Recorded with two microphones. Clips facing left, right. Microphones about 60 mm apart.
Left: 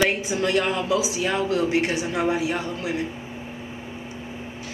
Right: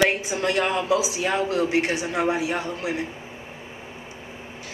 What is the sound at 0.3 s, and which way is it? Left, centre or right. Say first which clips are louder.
Speech: left 1 dB; right.